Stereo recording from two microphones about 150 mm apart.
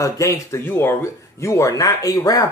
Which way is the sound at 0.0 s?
20° left (ahead or behind).